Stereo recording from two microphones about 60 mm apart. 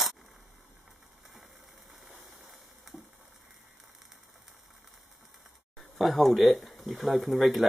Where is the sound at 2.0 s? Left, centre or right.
Centre.